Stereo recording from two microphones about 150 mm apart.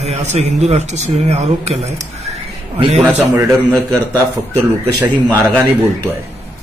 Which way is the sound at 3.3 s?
10° right (ahead or behind).